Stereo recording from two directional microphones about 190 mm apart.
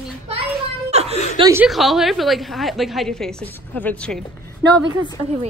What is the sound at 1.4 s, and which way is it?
Speech, 15° right (ahead or behind).